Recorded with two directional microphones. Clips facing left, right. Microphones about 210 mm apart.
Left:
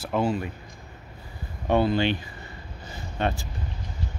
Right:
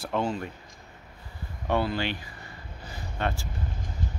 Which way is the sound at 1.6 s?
20° left (ahead or behind).